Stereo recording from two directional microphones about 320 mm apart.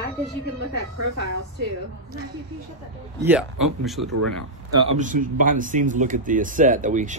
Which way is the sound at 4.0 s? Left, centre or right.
Right.